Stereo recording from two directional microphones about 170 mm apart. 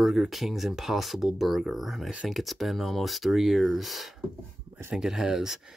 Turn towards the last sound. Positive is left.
turn(degrees=-5)  # may be behind; listen again after turning